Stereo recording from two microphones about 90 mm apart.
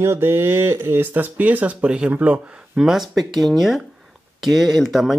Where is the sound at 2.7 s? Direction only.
5° right (ahead or behind).